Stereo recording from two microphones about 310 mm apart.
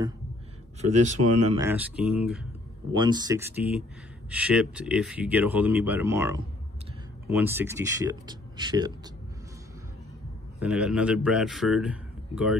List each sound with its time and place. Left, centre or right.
0.7 s speech: right
1.6 s speech: centre
3.0 s speech: centre
10.6 s speech: centre